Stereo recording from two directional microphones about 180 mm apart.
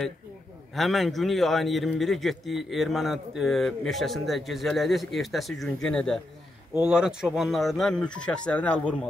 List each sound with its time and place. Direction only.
0.7 s a man's voice: centre (ahead or behind)